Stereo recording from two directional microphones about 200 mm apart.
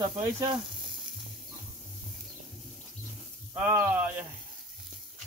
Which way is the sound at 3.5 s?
10° right (ahead or behind).